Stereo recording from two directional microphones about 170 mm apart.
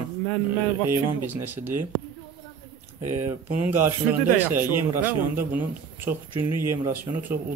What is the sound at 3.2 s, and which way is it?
Speech, 15° right (ahead or behind).